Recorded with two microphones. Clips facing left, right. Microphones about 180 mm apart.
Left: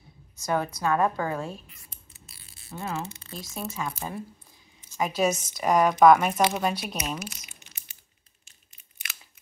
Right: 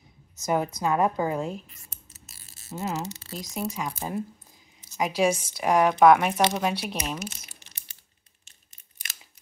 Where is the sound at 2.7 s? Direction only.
20° right (ahead or behind).